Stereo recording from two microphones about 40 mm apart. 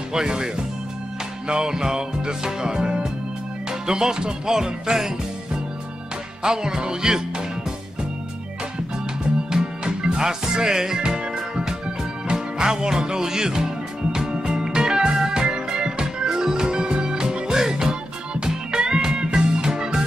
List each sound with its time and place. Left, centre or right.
0.1 s music: centre
1.5 s music: centre
6.4 s music: centre
9.5 s music: centre